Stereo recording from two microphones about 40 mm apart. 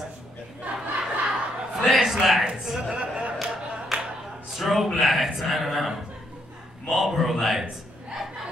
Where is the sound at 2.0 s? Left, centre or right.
Centre.